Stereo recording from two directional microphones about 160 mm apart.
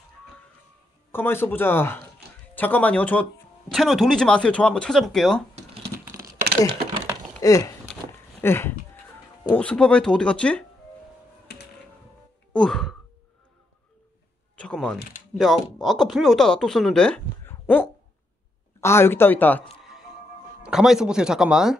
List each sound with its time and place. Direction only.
1.1 s speech: 15° left (ahead or behind)
7.4 s a sound: 20° left (ahead or behind)
8.4 s speech: 15° left (ahead or behind)
12.5 s speech: 5° left (ahead or behind)
14.6 s speech: 5° left (ahead or behind)
20.6 s speech: 5° right (ahead or behind)